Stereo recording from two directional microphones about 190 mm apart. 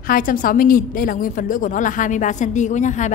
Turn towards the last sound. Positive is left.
turn(degrees=40)  # may be behind; listen again after turning